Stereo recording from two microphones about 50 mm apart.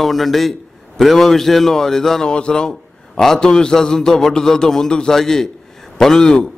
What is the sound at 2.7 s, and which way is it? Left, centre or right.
A man's voice, centre.